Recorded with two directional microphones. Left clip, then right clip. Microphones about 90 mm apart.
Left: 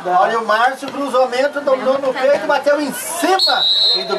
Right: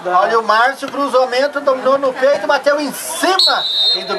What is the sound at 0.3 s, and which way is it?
A man's voice, 20° right (ahead or behind).